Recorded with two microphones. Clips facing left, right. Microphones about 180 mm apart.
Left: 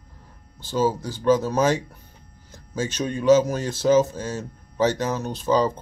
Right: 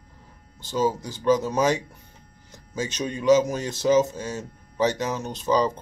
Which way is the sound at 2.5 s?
15° right (ahead or behind).